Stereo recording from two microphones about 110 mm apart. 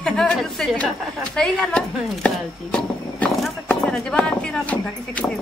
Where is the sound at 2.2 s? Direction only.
10° left (ahead or behind).